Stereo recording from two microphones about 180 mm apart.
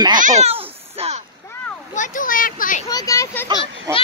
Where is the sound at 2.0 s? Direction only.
45° left (ahead or behind).